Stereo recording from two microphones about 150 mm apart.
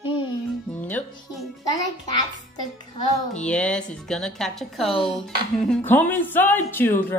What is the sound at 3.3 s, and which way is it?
A woman's voice, 5° left (ahead or behind).